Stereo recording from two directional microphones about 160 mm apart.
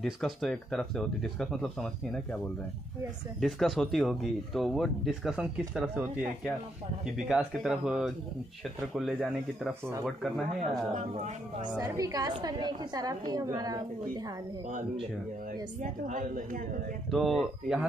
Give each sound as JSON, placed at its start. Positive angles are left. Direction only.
{"t": 0.0, "sound": "speech", "side_deg": 0}
{"t": 3.3, "sound": "speech", "side_deg": 0}
{"t": 11.0, "sound": "speech", "side_deg": -50}
{"t": 11.8, "sound": "a woman's voice", "side_deg": -25}
{"t": 15.8, "sound": "a woman's voice", "side_deg": -55}
{"t": 17.1, "sound": "speech", "side_deg": 0}